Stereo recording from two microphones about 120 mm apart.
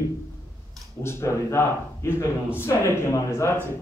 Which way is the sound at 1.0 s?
20° left (ahead or behind).